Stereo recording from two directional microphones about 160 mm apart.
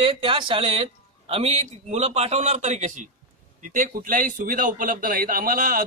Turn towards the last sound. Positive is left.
turn(degrees=-60)  # may be behind; listen again after turning